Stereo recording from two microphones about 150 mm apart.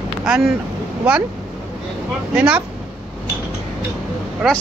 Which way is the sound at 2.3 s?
10° right (ahead or behind).